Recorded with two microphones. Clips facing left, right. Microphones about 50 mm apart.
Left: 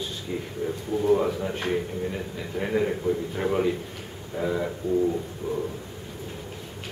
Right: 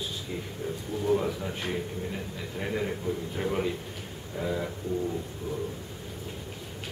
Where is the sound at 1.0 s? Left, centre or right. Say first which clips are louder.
Left 4 dB; centre.